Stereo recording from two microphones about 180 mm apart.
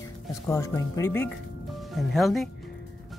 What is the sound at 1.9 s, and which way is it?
Speech, centre (ahead or behind).